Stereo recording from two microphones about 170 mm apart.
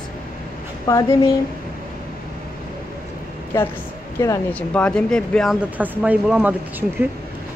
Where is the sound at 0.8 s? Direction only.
20° left (ahead or behind).